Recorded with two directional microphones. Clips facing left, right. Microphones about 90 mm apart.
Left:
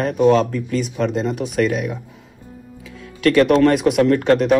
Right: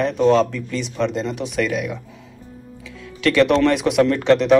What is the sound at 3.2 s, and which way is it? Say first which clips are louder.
Speech: left 2 dB; 45° left (ahead or behind).